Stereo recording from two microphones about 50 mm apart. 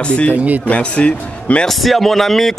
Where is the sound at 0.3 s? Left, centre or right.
Right.